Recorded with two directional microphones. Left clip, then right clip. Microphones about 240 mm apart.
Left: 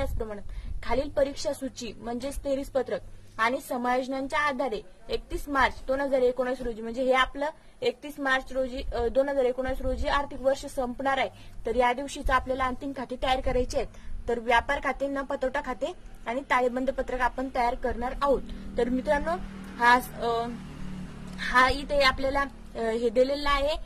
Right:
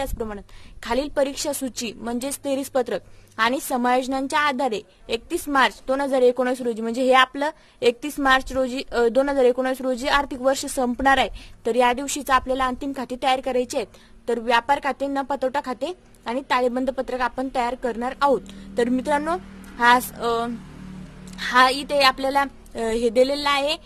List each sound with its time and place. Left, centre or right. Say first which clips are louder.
0.0 s a woman's voice: right 5 dB; right